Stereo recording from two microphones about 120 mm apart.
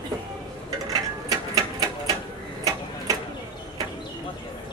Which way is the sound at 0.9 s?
30° right (ahead or behind).